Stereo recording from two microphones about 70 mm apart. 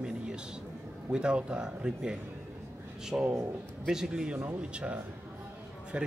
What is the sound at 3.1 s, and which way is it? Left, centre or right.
Speech, right.